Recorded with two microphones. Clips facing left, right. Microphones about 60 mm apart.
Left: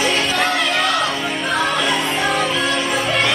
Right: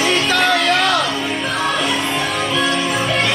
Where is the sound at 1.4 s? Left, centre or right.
Left.